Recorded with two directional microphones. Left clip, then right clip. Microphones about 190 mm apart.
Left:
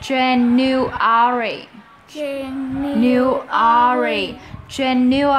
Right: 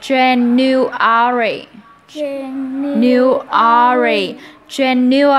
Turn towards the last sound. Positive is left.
turn(degrees=-15)  # may be behind; listen again after turning